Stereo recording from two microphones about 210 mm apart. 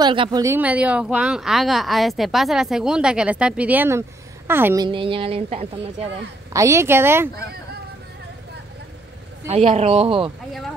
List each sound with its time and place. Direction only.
0.0 s a woman's voice: 20° right (ahead or behind)
4.8 s speech: 25° right (ahead or behind)
6.5 s a woman's voice: 15° right (ahead or behind)
9.5 s speech: 30° right (ahead or behind)